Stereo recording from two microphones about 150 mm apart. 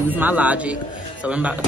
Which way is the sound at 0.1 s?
10° right (ahead or behind).